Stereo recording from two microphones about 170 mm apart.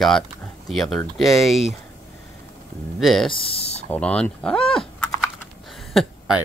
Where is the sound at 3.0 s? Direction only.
Centre (ahead or behind).